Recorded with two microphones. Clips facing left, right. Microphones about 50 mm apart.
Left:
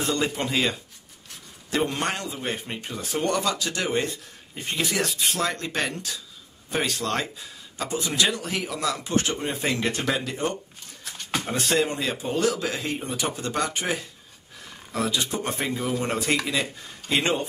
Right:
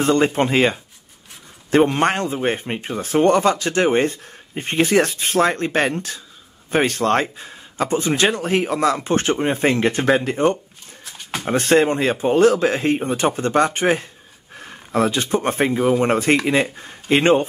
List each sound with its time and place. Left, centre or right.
0.0 s a man's voice: right
11.1 s a sound: centre
11.5 s a man's voice: right